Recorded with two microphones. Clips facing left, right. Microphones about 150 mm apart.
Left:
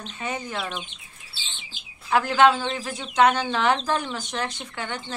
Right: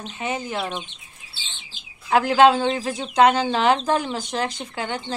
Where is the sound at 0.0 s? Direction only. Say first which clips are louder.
Right 3 dB; 20° right (ahead or behind).